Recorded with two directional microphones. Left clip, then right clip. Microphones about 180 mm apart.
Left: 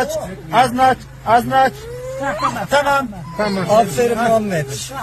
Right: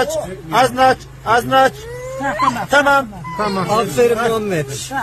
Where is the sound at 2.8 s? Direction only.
55° right (ahead or behind).